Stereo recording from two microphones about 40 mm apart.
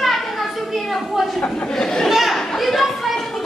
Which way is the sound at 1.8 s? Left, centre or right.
Centre.